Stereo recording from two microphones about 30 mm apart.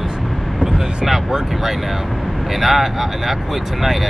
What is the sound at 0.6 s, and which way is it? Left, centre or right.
Vehicle, centre.